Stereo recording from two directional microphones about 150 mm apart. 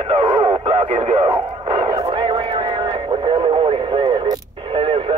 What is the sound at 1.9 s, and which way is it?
Radio, 35° right (ahead or behind).